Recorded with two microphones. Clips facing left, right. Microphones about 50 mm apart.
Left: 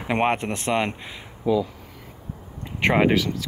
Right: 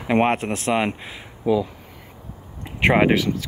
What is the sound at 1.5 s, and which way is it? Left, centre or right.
Speech, right.